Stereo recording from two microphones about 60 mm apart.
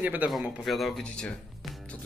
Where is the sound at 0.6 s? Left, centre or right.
Centre.